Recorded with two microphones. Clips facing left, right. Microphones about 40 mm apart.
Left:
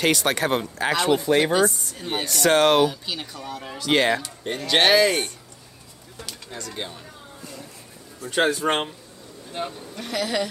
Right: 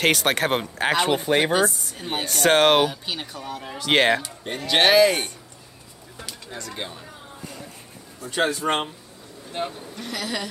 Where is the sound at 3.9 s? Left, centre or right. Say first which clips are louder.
Right 1 dB; right.